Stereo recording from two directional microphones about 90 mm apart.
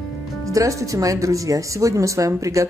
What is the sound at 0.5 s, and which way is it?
Speech, 35° right (ahead or behind).